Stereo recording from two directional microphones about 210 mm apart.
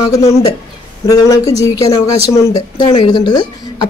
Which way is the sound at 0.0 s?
15° left (ahead or behind).